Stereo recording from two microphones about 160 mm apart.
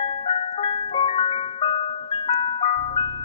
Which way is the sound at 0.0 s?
40° left (ahead or behind).